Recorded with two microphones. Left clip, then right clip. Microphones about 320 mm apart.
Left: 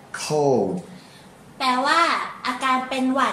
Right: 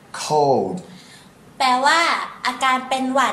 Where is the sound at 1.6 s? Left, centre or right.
Right.